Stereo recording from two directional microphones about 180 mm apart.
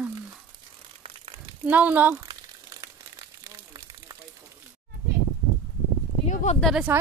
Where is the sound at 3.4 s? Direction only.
20° right (ahead or behind).